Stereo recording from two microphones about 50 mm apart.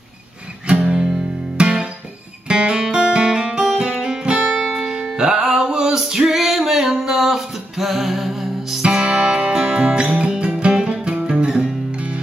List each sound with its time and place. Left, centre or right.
0.8 s music: centre
2.4 s guitar: centre
3.9 s music: centre
8.8 s music: centre